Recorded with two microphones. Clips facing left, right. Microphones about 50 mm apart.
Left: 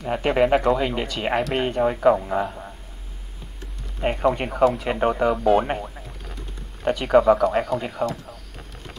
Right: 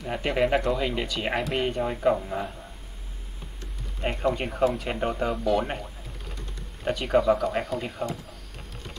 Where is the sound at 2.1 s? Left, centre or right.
Left.